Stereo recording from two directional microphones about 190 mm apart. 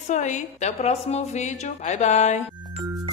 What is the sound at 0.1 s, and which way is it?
A woman's voice, 40° left (ahead or behind).